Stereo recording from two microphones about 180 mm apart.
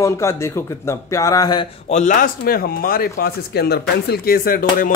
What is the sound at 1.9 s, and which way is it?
Speech, 40° left (ahead or behind).